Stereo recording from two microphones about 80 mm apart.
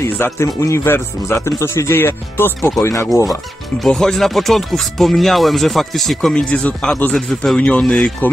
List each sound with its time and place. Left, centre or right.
0.0 s speech: left
3.8 s speech: centre
8.2 s speech: left